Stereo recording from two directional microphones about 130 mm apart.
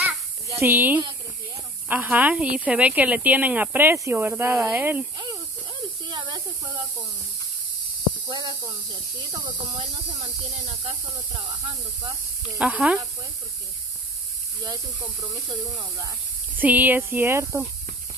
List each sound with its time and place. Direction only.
0.5 s speech: 15° right (ahead or behind)
5.1 s snake: 30° right (ahead or behind)
8.3 s speech: 35° right (ahead or behind)
10.7 s speech: 50° right (ahead or behind)
11.4 s speech: 35° right (ahead or behind)
12.4 s speech: 5° right (ahead or behind)
14.6 s speech: 35° right (ahead or behind)
16.5 s speech: 15° right (ahead or behind)